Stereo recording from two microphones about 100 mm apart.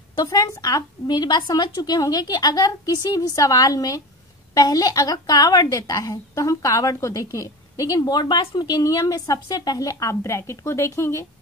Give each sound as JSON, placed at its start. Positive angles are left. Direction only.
{"t": 0.2, "sound": "a woman's voice", "side_deg": 40}